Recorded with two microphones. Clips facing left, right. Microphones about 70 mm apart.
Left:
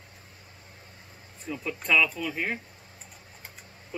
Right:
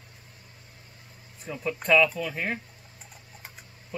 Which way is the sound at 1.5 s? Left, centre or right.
Centre.